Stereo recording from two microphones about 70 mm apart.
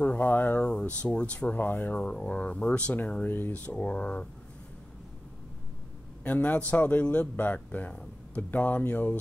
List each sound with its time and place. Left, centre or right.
0.0 s a sound: left
0.7 s speech: centre
6.2 s speech: left